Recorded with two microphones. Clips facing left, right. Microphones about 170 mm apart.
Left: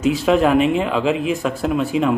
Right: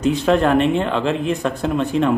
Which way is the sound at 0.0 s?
5° left (ahead or behind).